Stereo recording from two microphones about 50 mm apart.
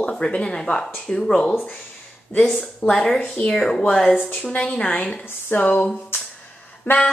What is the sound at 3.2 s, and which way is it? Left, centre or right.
Speech, left.